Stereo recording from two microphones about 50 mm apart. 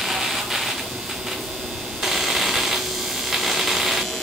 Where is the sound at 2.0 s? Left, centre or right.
Centre.